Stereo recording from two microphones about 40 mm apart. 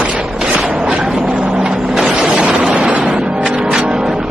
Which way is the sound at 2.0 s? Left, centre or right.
Centre.